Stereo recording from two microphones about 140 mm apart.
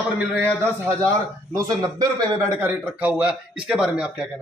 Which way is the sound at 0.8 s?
25° right (ahead or behind).